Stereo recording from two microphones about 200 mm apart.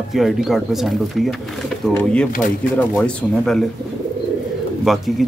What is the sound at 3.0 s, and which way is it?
Speech, centre (ahead or behind).